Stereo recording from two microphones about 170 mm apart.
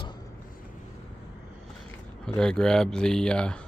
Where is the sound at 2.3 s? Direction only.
5° left (ahead or behind).